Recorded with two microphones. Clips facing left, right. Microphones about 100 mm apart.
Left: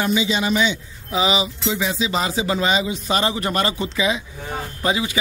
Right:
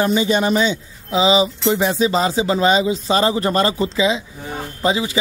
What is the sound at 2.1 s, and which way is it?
A man's voice, 30° right (ahead or behind).